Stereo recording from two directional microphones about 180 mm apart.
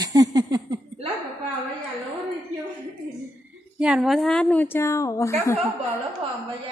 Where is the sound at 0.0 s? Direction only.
20° right (ahead or behind).